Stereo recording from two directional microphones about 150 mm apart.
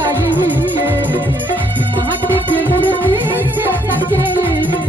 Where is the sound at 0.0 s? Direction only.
15° right (ahead or behind).